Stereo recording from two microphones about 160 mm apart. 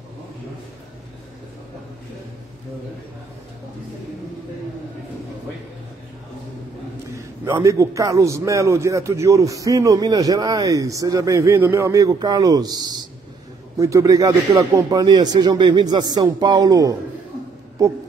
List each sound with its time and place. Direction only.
7.5 s a man's voice: 20° right (ahead or behind)